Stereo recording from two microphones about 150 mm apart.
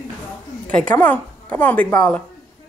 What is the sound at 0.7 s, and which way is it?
A woman's voice, 10° left (ahead or behind).